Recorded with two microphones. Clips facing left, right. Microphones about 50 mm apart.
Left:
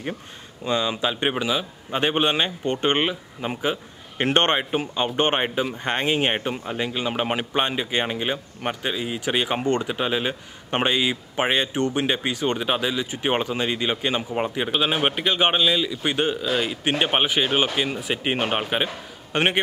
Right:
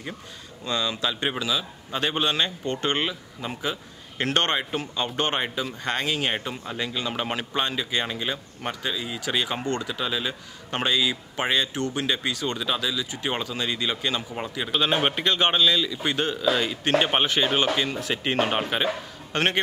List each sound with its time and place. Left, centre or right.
0.7 s speech: left
14.7 s a man's voice: centre